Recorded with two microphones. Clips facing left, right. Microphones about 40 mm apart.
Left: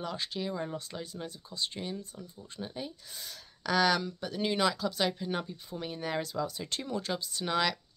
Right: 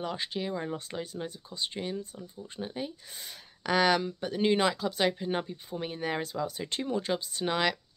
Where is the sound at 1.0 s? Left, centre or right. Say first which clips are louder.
Right 3 dB; right.